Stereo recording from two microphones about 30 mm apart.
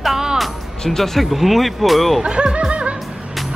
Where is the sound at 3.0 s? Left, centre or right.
Centre.